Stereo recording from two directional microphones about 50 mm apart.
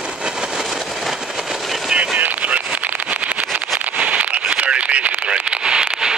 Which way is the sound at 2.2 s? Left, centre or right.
Right.